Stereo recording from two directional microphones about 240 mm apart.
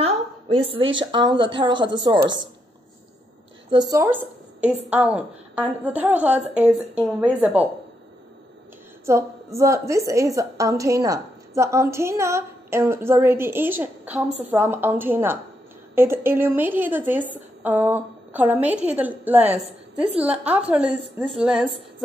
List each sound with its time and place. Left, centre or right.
0.9 s a woman's voice: centre
3.7 s a woman's voice: centre
9.0 s a woman's voice: centre